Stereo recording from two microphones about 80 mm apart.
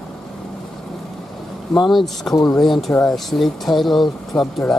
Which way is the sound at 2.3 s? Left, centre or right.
Left.